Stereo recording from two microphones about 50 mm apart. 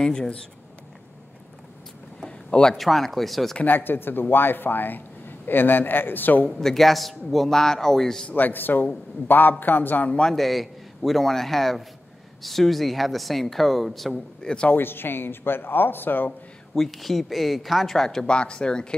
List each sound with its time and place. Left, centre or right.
0.0 s a man's voice: centre
2.2 s a sound: centre
2.8 s speech: centre
3.6 s speech: left
6.6 s a man's voice: centre
8.3 s a man's voice: left
10.3 s speech: centre
14.4 s speech: centre
14.7 s speech: left
16.7 s speech: centre
18.2 s speech: centre